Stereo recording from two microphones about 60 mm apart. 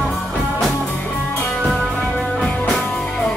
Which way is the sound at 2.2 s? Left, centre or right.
Centre.